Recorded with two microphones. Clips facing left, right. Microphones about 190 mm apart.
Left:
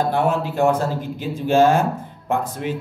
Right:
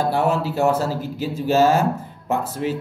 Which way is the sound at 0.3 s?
55° left (ahead or behind).